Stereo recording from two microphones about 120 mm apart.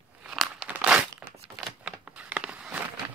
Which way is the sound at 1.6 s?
5° right (ahead or behind).